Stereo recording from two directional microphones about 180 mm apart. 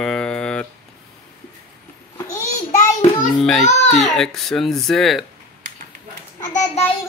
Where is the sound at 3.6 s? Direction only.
40° left (ahead or behind).